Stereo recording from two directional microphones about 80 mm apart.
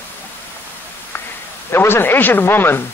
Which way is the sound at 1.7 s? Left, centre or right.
Left.